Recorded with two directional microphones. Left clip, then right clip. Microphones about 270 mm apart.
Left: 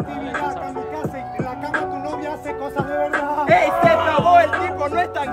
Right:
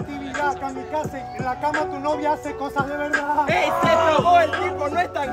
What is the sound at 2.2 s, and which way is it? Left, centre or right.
Speech, centre.